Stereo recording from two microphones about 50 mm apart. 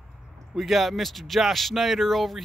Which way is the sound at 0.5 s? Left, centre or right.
Centre.